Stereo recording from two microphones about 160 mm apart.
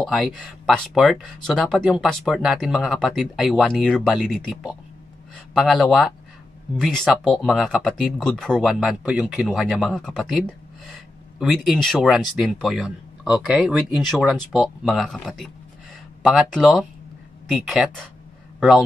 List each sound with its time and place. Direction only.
0.0 s speech: centre (ahead or behind)